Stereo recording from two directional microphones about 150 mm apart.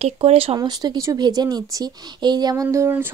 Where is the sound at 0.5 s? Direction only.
25° right (ahead or behind).